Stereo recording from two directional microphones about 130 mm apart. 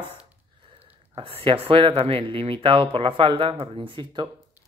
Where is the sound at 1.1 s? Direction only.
45° right (ahead or behind).